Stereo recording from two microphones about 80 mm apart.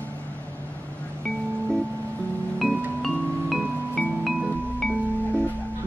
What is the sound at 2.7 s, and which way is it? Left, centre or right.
Marimba, centre.